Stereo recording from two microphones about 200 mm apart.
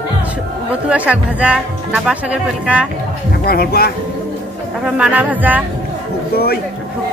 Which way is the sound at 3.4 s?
50° left (ahead or behind).